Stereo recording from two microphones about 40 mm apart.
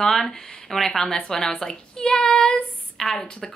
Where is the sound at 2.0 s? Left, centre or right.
Left.